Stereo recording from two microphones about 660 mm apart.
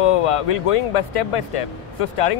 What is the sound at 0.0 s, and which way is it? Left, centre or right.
Speech, left.